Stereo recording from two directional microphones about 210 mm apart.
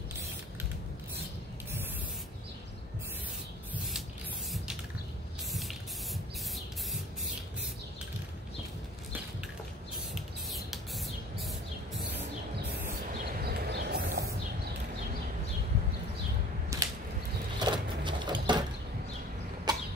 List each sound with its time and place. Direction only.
5.5 s spray: centre (ahead or behind)
10.1 s rodents: centre (ahead or behind)
13.4 s vehicle: 45° right (ahead or behind)
16.7 s a sound: 15° right (ahead or behind)
19.7 s cough: 20° right (ahead or behind)